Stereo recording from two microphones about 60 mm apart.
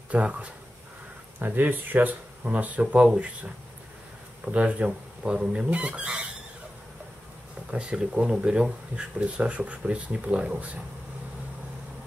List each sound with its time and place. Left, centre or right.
0.1 s speech: right
1.4 s speech: right; by 3.3 s centre
4.5 s speech: right
7.7 s speech: centre